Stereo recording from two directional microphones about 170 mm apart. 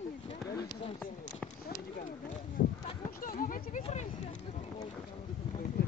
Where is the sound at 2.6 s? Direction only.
50° left (ahead or behind).